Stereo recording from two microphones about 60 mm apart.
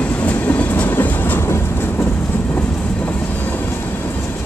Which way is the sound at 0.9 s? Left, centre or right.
Left.